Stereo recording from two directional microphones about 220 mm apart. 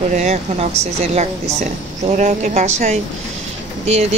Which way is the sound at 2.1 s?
35° right (ahead or behind).